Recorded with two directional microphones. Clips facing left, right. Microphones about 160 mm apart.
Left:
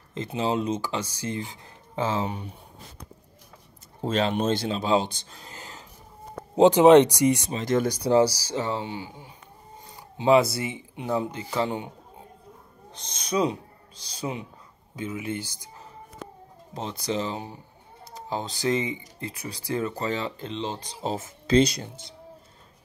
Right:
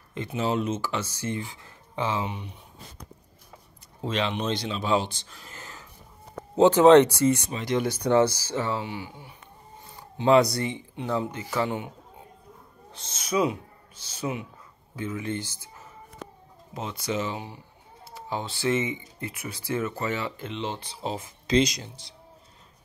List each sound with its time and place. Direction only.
0.1 s speech: 30° left (ahead or behind)
0.7 s speech: 15° left (ahead or behind)
1.6 s speech: 40° left (ahead or behind)
4.0 s speech: 40° left (ahead or behind)
5.5 s whispering: 20° left (ahead or behind)
6.5 s speech: 15° left (ahead or behind)
7.5 s speech: 45° left (ahead or behind)
8.5 s speech: 20° left (ahead or behind)
11.3 s speech: 25° left (ahead or behind)
12.9 s a man's voice: 15° left (ahead or behind)
15.0 s speech: 10° left (ahead or behind)
16.7 s speech: 35° left (ahead or behind)
21.8 s speech: 50° left (ahead or behind)